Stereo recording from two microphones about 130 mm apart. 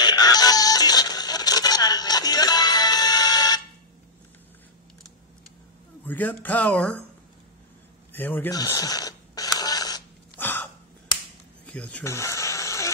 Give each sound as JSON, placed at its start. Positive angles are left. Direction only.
{"t": 0.0, "sound": "music", "side_deg": 30}
{"t": 6.0, "sound": "speech", "side_deg": 15}
{"t": 8.1, "sound": "speech", "side_deg": 15}
{"t": 8.5, "sound": "a sound", "side_deg": 30}
{"t": 10.3, "sound": "gasp", "side_deg": 15}
{"t": 11.6, "sound": "speech", "side_deg": 10}
{"t": 12.0, "sound": "a sound", "side_deg": 20}